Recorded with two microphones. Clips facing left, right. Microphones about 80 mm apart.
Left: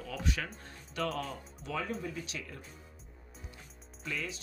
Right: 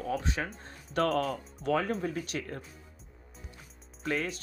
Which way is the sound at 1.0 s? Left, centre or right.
Right.